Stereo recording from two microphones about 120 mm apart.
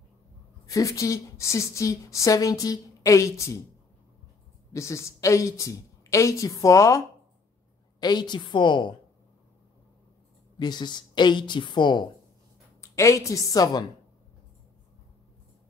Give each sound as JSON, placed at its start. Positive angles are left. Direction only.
{"t": 0.7, "sound": "a woman's voice", "side_deg": 30}
{"t": 4.7, "sound": "a woman's voice", "side_deg": 25}
{"t": 8.0, "sound": "a woman's voice", "side_deg": 35}
{"t": 10.6, "sound": "a woman's voice", "side_deg": 40}
{"t": 12.9, "sound": "a woman's voice", "side_deg": 25}